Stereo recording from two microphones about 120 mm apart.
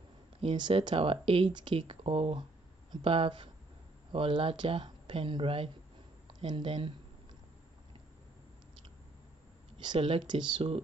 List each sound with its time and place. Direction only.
0.4 s speech: 45° right (ahead or behind)
9.8 s speech: 45° right (ahead or behind)